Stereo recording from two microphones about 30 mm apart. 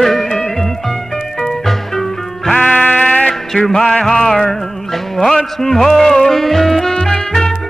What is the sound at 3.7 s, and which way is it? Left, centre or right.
Music, centre.